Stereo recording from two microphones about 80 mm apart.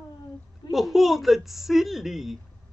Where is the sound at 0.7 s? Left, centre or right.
Centre.